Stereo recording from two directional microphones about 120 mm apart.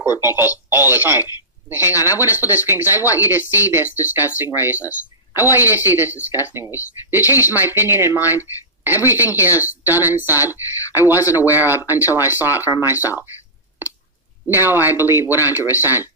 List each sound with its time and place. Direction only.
0.2 s a woman's voice: 20° right (ahead or behind)
14.5 s speech: 20° right (ahead or behind)